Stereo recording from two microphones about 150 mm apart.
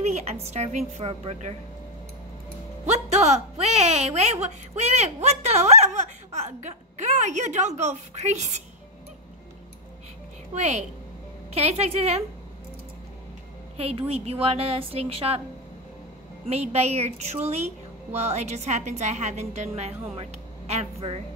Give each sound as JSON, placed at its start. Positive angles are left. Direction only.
{"t": 0.0, "sound": "a woman's voice", "side_deg": -50}
{"t": 2.9, "sound": "a woman's voice", "side_deg": -50}
{"t": 10.5, "sound": "a woman's voice", "side_deg": -50}
{"t": 13.7, "sound": "a woman's voice", "side_deg": -40}
{"t": 16.4, "sound": "a woman's voice", "side_deg": -45}